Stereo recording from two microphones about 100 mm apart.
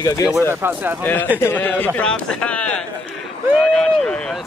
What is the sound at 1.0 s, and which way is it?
Speech, 20° left (ahead or behind).